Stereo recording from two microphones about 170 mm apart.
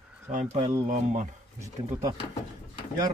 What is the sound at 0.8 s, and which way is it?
Speech, 50° right (ahead or behind).